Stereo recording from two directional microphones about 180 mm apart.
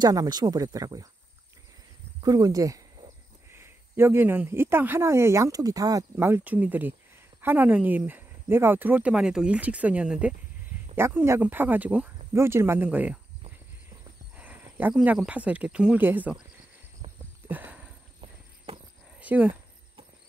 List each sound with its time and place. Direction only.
0.0 s speech: 20° right (ahead or behind)
2.2 s speech: 20° right (ahead or behind)
14.3 s speech: 10° right (ahead or behind)
17.5 s a sound: 10° right (ahead or behind)
18.7 s cricket: 30° right (ahead or behind)
19.1 s speech: 10° right (ahead or behind)